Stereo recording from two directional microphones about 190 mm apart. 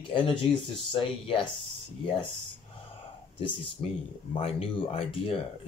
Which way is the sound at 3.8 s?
30° left (ahead or behind).